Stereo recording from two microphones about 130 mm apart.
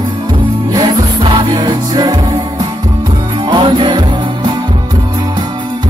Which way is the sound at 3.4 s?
40° right (ahead or behind).